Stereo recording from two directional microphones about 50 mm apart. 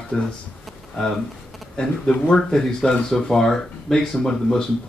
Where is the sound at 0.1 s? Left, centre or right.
Centre.